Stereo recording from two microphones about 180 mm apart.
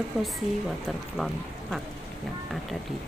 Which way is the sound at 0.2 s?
Centre (ahead or behind).